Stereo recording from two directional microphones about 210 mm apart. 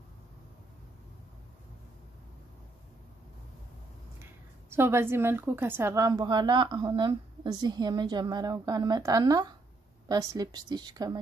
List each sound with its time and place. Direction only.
4.2 s a woman's voice: 10° right (ahead or behind)